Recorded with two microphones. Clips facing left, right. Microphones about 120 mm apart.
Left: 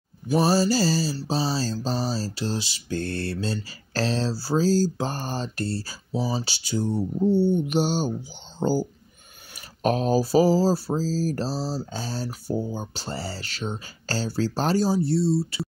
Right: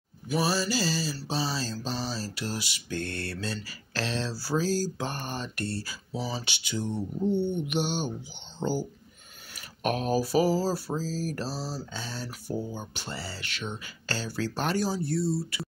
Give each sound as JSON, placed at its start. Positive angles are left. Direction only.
{"t": 0.3, "sound": "speech", "side_deg": 40}